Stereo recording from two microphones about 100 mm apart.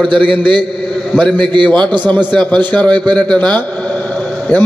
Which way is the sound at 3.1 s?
10° left (ahead or behind).